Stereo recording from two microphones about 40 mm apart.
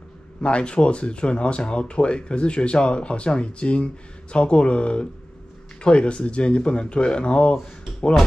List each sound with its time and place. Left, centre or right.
0.4 s speech: left